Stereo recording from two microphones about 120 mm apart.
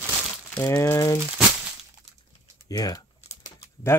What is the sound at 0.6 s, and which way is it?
Speech, 20° left (ahead or behind).